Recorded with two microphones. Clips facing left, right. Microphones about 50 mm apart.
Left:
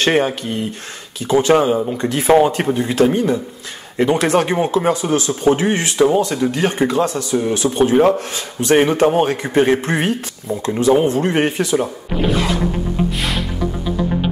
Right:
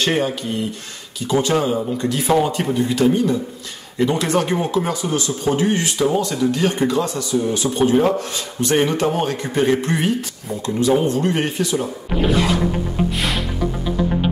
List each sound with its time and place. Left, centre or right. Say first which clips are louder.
0.0 s speech: left 4 dB; left